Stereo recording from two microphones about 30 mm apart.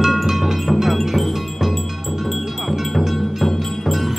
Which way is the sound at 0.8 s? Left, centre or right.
Centre.